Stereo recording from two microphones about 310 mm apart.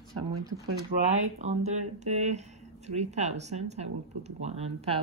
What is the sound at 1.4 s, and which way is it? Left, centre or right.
Speech, right.